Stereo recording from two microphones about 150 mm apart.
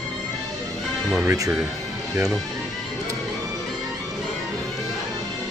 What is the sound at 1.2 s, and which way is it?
Speech, 20° right (ahead or behind).